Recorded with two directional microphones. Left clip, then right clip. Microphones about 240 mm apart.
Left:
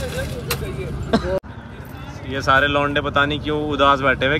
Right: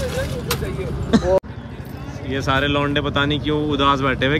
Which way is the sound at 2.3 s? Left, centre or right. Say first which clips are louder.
Left 3 dB; centre.